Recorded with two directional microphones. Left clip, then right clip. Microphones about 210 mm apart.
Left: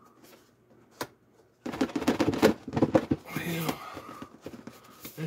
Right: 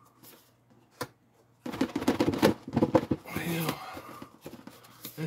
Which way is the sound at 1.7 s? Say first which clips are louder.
Left 1 dB; 25° left (ahead or behind).